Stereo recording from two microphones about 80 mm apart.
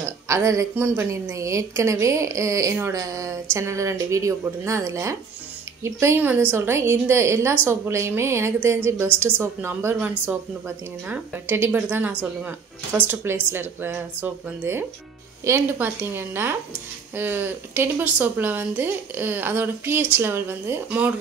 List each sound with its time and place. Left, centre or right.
0.0 s a sound: right
0.7 s speech: right
1.1 s a woman's voice: right
6.1 s a woman's voice: right
9.9 s speech: centre
15.5 s a woman's voice: right